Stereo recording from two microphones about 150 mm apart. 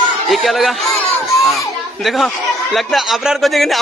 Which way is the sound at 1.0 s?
10° left (ahead or behind).